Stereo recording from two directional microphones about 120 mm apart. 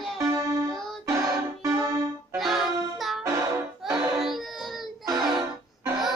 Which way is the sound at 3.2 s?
25° right (ahead or behind).